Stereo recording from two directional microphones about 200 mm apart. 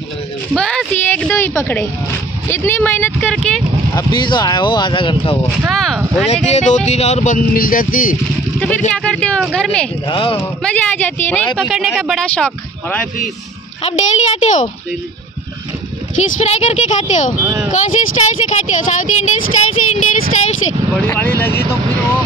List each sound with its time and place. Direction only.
0.6 s a sound: 5° left (ahead or behind)
1.6 s speech: 10° left (ahead or behind)
3.9 s speech: 20° left (ahead or behind)
5.7 s speech: centre (ahead or behind)
6.2 s speech: 35° left (ahead or behind)
8.5 s speech: 5° left (ahead or behind)
10.0 s speech: 25° left (ahead or behind)
10.6 s speech: 5° left (ahead or behind)
13.8 s speech: 35° left (ahead or behind)
16.2 s speech: 35° left (ahead or behind)
17.4 s speech: 5° right (ahead or behind)
17.6 s speech: 35° left (ahead or behind)
21.1 s speech: 10° left (ahead or behind)